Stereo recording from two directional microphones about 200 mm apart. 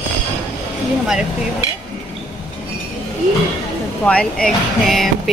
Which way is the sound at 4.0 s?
5° left (ahead or behind).